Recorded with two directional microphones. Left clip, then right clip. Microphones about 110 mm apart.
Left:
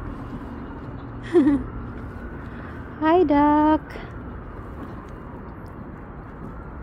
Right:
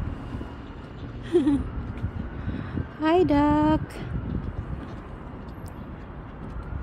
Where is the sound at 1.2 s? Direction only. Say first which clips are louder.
Left 4 dB; 40° right (ahead or behind).